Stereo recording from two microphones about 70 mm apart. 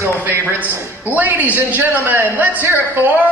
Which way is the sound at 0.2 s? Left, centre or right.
Right.